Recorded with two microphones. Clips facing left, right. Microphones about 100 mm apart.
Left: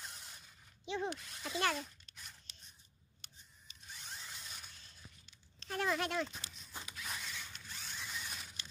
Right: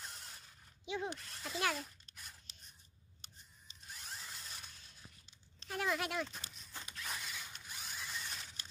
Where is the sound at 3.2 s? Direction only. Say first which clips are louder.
Right 1 dB; 35° right (ahead or behind).